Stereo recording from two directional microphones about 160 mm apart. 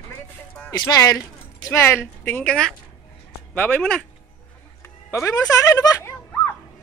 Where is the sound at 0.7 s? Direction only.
25° left (ahead or behind); by 4.1 s 5° left (ahead or behind).